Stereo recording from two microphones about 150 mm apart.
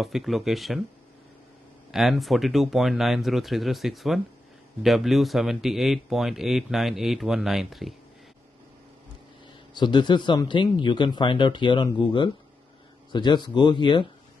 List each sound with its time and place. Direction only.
0.0 s speech: centre (ahead or behind)
1.9 s speech: centre (ahead or behind)
9.8 s speech: 30° left (ahead or behind)